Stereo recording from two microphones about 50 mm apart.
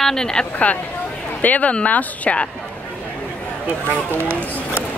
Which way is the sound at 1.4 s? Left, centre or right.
Left.